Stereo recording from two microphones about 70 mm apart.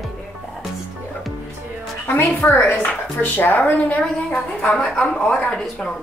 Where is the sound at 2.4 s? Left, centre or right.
Left.